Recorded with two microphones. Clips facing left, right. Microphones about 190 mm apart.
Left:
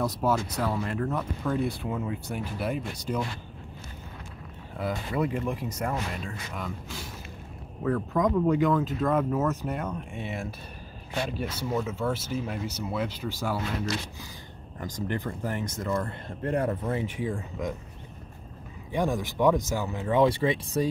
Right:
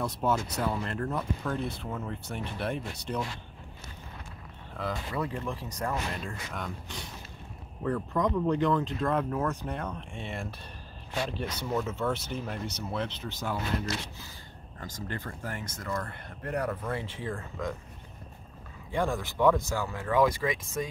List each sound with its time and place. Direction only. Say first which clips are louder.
0.2 s speech: right 1 dB; 5° left (ahead or behind)
4.7 s speech: left 4 dB; 10° left (ahead or behind)
14.8 s speech: left 6 dB; 15° left (ahead or behind)
18.9 s speech: left 2 dB; 15° left (ahead or behind); by 20.9 s 35° left (ahead or behind)